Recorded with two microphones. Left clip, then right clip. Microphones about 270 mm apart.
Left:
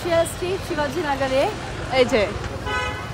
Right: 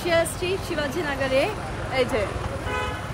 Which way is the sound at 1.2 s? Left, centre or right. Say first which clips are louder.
Left 1 dB; centre.